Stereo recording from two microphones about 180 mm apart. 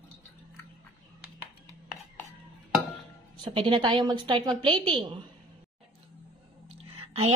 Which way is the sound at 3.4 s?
30° right (ahead or behind).